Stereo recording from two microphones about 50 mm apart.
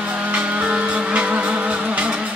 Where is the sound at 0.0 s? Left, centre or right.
Right.